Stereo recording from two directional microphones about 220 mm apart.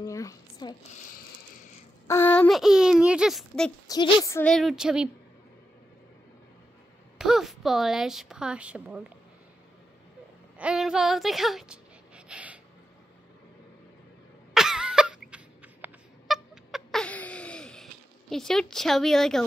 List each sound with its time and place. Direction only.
0.0 s a sound: 15° left (ahead or behind)
0.9 s a sound: 35° left (ahead or behind)
2.0 s a woman's voice: 10° left (ahead or behind)
3.8 s a woman's voice: 15° left (ahead or behind); by 5.1 s 5° right (ahead or behind)
7.2 s a woman's voice: centre (ahead or behind)
10.6 s a woman's voice: 5° right (ahead or behind)
12.3 s gasp: 5° right (ahead or behind)
14.5 s a sound: centre (ahead or behind)
18.3 s a woman's voice: centre (ahead or behind)